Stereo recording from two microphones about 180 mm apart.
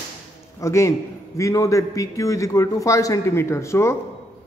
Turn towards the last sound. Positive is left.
turn(degrees=15)  # may be behind; listen again after turning